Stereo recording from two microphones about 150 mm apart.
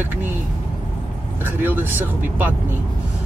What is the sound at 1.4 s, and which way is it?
Speech, 10° right (ahead or behind).